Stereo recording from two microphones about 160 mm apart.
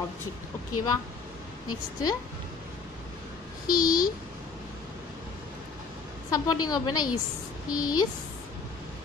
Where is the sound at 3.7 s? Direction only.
60° left (ahead or behind).